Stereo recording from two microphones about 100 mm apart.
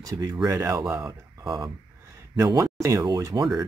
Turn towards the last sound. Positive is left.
turn(degrees=-40)  # may be behind; listen again after turning